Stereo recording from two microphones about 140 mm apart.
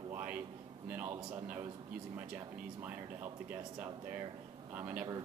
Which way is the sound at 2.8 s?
10° right (ahead or behind).